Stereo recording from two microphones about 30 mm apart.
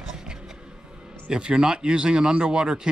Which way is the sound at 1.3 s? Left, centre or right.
Right.